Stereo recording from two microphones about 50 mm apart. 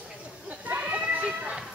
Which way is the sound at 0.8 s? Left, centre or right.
Right.